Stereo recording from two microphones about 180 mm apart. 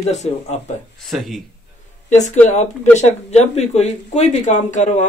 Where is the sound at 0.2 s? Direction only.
35° left (ahead or behind).